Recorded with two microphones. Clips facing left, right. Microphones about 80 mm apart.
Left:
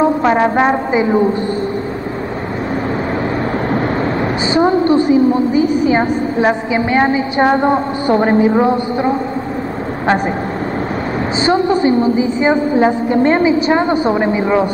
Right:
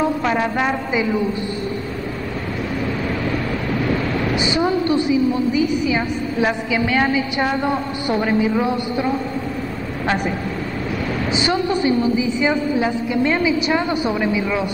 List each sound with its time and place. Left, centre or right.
0.0 s a woman's voice: left
4.6 s a woman's voice: left
11.4 s a woman's voice: left